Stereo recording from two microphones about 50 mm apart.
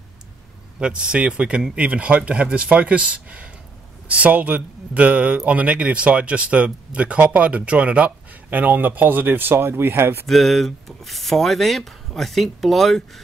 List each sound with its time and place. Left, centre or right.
0.7 s speech: centre; by 10.2 s right
10.2 s speech: centre